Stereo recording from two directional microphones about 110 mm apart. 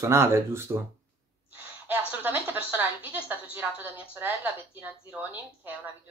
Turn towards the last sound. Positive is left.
turn(degrees=-15)  # may be behind; listen again after turning